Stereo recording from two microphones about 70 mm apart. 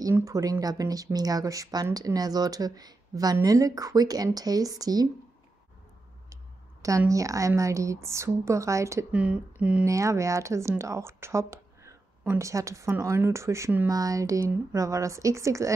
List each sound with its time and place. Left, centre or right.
0.2 s speech: right
3.4 s speech: right
7.1 s a woman's voice: right
9.1 s speech: centre
9.8 s a woman's voice: right
13.8 s a woman's voice: right